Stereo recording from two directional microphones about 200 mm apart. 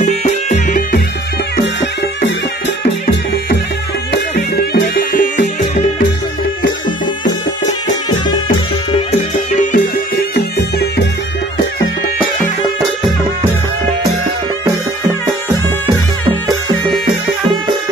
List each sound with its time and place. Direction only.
0.0 s music: 40° left (ahead or behind)
4.1 s music: 55° left (ahead or behind)
5.1 s music: 45° left (ahead or behind)
9.5 s music: 40° left (ahead or behind)
16.3 s music: 20° right (ahead or behind)